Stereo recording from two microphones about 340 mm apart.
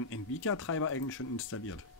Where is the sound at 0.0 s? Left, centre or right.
Left.